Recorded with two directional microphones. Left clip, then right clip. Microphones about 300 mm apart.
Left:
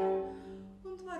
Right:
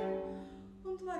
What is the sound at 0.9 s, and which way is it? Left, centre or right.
Music, centre.